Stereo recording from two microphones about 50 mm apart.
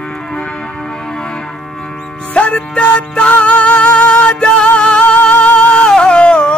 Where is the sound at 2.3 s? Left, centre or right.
Left.